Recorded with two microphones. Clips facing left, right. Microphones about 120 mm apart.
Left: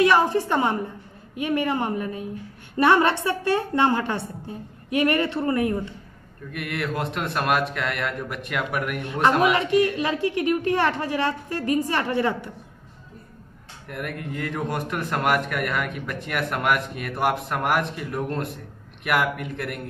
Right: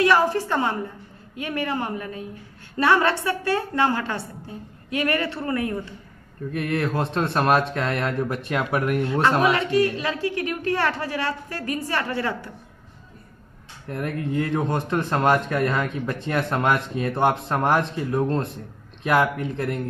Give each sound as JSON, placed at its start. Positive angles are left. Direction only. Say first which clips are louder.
{"t": 0.0, "sound": "a woman's voice", "louder": "even", "side_deg": 20}
{"t": 6.5, "sound": "speech", "louder": "right 4 dB", "side_deg": -30}
{"t": 9.5, "sound": "a woman's voice", "louder": "even", "side_deg": 20}
{"t": 13.8, "sound": "speech", "louder": "right 5 dB", "side_deg": -30}